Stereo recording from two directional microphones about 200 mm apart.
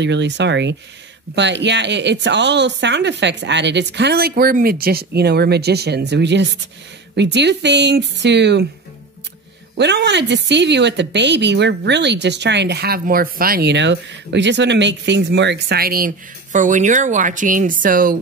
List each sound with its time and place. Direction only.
0.0 s speech: 60° right (ahead or behind)
9.8 s speech: 60° right (ahead or behind); by 18.1 s 45° right (ahead or behind)